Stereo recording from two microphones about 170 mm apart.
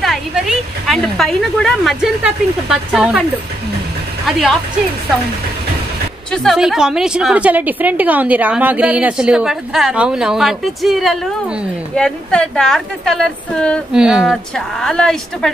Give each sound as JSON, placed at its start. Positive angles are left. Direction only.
{"t": 0.0, "sound": "a woman's voice", "side_deg": 0}
{"t": 4.3, "sound": "a woman's voice", "side_deg": 0}
{"t": 6.3, "sound": "a woman's voice", "side_deg": 0}